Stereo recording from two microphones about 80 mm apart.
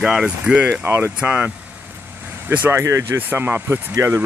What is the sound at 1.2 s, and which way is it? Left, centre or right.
Speech, centre.